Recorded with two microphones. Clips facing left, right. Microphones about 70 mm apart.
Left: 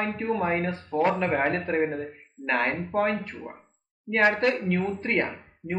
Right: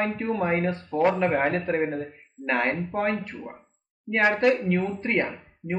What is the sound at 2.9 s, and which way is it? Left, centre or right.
Speech, centre.